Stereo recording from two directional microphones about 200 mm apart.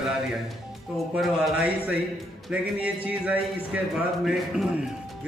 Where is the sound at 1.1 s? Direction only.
5° right (ahead or behind).